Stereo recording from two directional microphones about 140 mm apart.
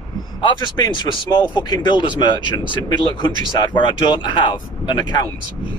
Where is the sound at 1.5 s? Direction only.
35° left (ahead or behind).